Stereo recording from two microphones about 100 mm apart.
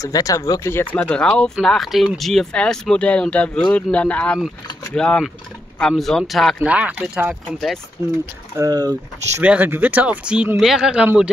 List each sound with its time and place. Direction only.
0.0 s speech: 35° left (ahead or behind); by 6.5 s centre (ahead or behind)
6.6 s speech: 15° right (ahead or behind)
8.5 s speech: 40° right (ahead or behind)
9.4 s speech: 15° right (ahead or behind)